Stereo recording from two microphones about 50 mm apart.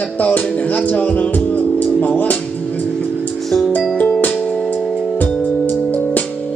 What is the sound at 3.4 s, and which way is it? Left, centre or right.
Music, centre.